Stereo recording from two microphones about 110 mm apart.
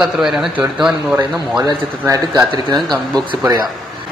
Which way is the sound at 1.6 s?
30° right (ahead or behind).